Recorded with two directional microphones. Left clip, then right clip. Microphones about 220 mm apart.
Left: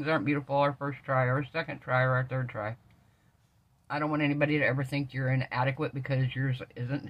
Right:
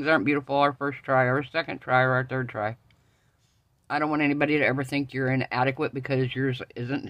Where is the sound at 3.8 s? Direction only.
55° right (ahead or behind).